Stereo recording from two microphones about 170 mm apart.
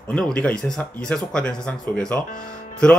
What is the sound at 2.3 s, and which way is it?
Speech, 55° left (ahead or behind).